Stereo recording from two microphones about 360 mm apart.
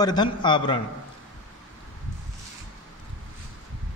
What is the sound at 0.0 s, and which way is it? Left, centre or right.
Speech, centre.